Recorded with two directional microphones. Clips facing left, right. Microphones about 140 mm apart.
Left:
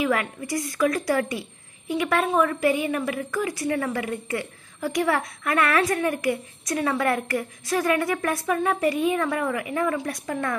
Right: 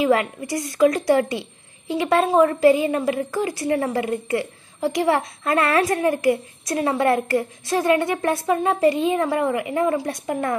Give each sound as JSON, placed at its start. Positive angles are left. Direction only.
{"t": 0.0, "sound": "a woman's voice", "side_deg": -25}